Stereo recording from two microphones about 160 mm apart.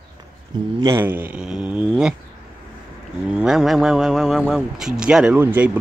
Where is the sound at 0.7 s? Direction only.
15° right (ahead or behind).